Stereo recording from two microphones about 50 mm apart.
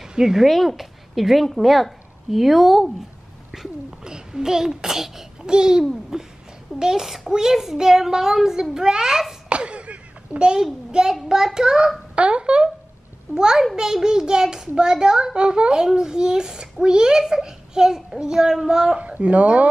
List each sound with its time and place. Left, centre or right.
0.0 s a child's voice: centre
9.5 s a sound: right
10.5 s a child's voice: centre
12.2 s a sound: right
13.3 s a child's voice: centre
18.9 s a child's voice: right